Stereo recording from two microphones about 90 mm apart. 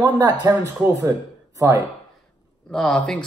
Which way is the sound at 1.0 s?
35° right (ahead or behind).